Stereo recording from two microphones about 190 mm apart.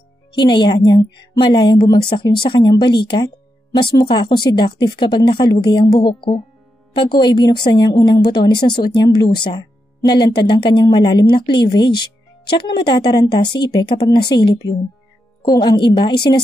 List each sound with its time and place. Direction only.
0.3 s speech: 25° left (ahead or behind)